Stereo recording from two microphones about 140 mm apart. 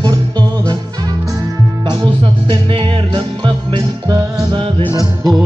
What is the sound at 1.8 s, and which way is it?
Music, 35° right (ahead or behind).